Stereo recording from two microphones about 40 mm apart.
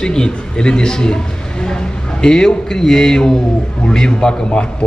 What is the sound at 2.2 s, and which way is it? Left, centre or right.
A man's voice, centre.